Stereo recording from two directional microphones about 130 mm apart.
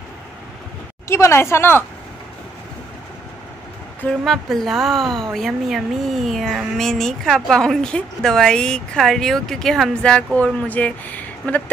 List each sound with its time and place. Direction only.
1.0 s a woman's voice: 20° left (ahead or behind)
4.2 s a woman's voice: centre (ahead or behind)